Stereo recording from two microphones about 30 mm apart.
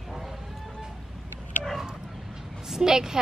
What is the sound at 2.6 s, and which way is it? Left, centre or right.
Speech, centre.